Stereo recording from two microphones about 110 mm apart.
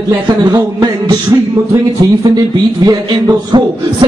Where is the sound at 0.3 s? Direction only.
35° right (ahead or behind).